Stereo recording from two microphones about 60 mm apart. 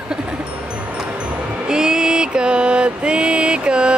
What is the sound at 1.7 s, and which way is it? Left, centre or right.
Mantra, centre.